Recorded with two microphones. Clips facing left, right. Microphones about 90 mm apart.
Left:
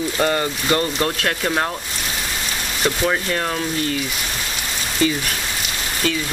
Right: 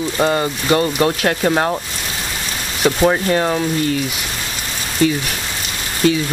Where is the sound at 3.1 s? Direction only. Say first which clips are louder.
Right 5 dB; 15° right (ahead or behind).